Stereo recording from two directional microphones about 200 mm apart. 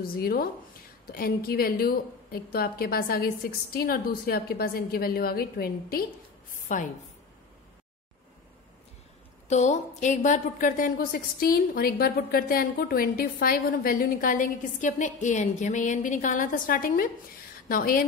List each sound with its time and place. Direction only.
0.0 s a woman's voice: 50° left (ahead or behind)
9.5 s a woman's voice: 35° left (ahead or behind)